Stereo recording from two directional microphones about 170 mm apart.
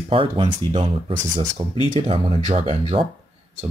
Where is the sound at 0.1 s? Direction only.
30° right (ahead or behind).